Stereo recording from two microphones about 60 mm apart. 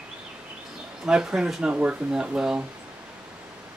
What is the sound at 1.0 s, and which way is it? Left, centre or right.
Speech, centre.